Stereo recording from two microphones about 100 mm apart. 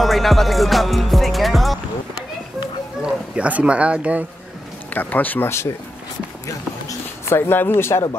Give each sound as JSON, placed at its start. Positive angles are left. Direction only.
{"t": 0.0, "sound": "music", "side_deg": 0}
{"t": 3.0, "sound": "speech", "side_deg": -15}
{"t": 4.9, "sound": "speech", "side_deg": 15}
{"t": 6.9, "sound": "speech", "side_deg": 25}